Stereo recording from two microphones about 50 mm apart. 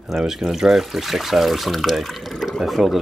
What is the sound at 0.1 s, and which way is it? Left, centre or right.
Speech, centre.